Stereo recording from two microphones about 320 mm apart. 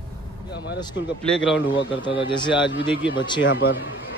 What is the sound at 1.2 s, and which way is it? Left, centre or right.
Speech, centre.